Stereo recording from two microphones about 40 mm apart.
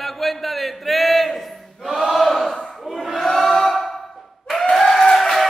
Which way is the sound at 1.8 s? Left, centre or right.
Centre.